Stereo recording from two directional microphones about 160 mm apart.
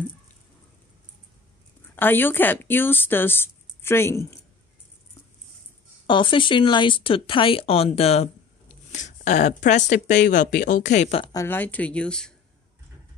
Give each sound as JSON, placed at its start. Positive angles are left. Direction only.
{"t": 2.0, "sound": "speech", "side_deg": 10}
{"t": 6.0, "sound": "speech", "side_deg": 30}
{"t": 10.1, "sound": "speech", "side_deg": 60}
{"t": 11.3, "sound": "speech", "side_deg": 15}